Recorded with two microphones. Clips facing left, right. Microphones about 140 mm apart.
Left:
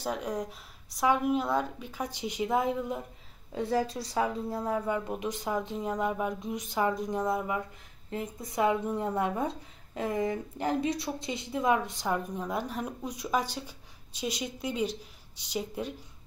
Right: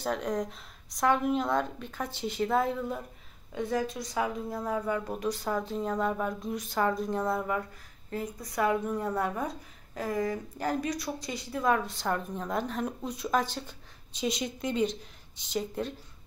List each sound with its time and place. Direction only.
0.0 s speech: 5° left (ahead or behind)
3.5 s speech: 30° left (ahead or behind); by 15.9 s 10° left (ahead or behind)